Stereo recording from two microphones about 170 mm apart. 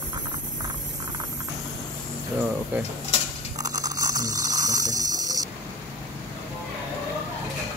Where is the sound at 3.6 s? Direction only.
20° right (ahead or behind).